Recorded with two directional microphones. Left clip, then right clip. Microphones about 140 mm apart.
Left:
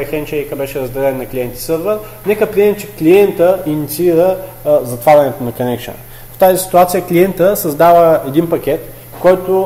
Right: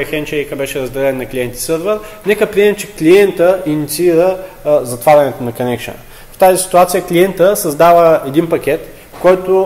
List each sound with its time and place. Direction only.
0.0 s a man's voice: 25° right (ahead or behind); by 5.9 s centre (ahead or behind)
6.7 s a man's voice: 15° left (ahead or behind); by 9.6 s 5° right (ahead or behind)